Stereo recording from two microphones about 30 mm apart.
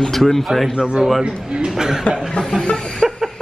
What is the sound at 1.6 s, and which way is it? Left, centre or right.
Speech, centre.